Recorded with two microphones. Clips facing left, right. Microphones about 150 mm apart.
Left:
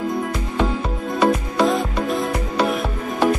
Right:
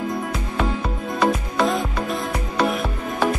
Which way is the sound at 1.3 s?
Centre (ahead or behind).